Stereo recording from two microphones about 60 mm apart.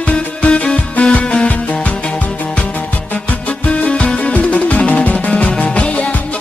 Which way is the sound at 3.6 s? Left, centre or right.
Left.